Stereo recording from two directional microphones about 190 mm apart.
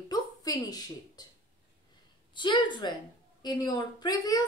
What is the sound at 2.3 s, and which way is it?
A woman's voice, 25° left (ahead or behind).